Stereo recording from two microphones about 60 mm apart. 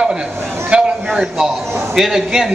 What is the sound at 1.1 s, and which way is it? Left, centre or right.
A man's voice, centre.